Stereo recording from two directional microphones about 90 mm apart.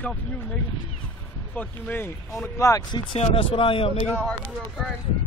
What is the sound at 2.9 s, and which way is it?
Speech, 70° left (ahead or behind).